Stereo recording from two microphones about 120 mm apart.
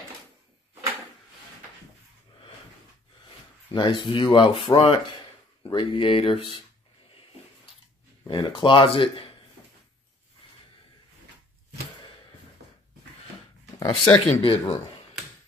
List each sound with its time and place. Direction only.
3.7 s speech: 40° left (ahead or behind)
8.3 s speech: 40° left (ahead or behind)
13.7 s speech: 45° left (ahead or behind)